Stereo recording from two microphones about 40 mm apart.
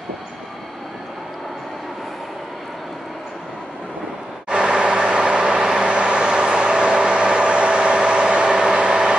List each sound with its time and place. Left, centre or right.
4.5 s vehicle: right